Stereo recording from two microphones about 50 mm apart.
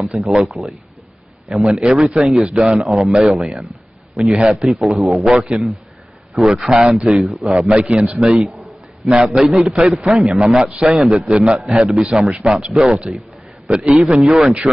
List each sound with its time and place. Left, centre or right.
0.2 s a man's voice: centre
8.1 s a man's voice: centre
9.0 s a man's voice: centre